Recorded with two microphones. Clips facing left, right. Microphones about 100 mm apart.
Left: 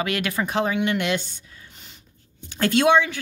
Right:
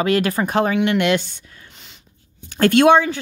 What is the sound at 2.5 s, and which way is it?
Speech, 60° right (ahead or behind).